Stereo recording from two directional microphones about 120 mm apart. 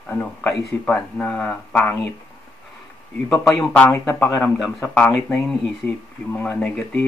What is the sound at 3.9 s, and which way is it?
Speech, 20° left (ahead or behind).